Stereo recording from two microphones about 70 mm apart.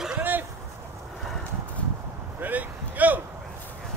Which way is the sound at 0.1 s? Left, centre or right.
Right.